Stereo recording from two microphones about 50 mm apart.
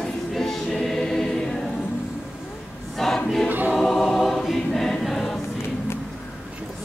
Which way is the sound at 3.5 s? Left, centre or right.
Right.